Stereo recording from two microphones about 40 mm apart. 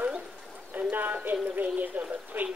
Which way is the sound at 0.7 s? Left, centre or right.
Right.